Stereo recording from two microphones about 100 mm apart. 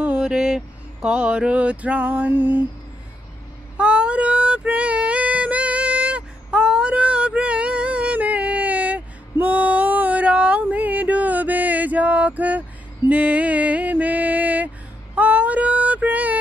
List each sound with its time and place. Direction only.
0.0 s a sound: 10° right (ahead or behind)
3.7 s female singing: 10° right (ahead or behind)
13.1 s music: 15° right (ahead or behind)
15.1 s female singing: 15° right (ahead or behind)